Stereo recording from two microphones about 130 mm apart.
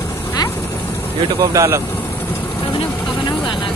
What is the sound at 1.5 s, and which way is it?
Speech, 20° right (ahead or behind).